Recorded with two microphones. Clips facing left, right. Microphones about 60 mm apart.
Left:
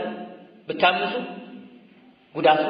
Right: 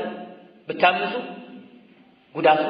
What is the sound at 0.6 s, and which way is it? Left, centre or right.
Speech, right.